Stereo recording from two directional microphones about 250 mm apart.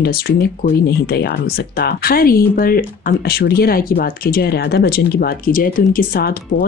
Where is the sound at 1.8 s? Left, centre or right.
Left.